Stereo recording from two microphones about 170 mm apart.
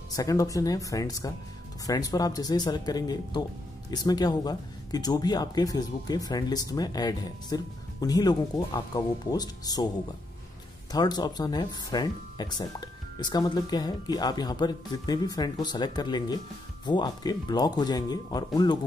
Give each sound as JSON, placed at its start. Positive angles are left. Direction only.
{"t": 0.1, "sound": "speech", "side_deg": 20}
{"t": 10.9, "sound": "speech", "side_deg": 25}